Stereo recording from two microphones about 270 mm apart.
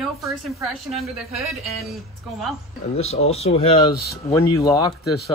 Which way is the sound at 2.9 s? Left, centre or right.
Left.